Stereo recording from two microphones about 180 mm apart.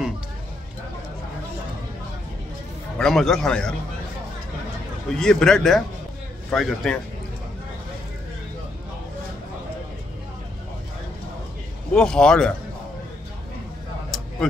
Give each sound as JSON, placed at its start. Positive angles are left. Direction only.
{"t": 3.0, "sound": "a man's voice", "side_deg": 0}
{"t": 5.1, "sound": "a man's voice", "side_deg": 5}
{"t": 11.9, "sound": "a man's voice", "side_deg": 5}
{"t": 14.4, "sound": "a man's voice", "side_deg": 0}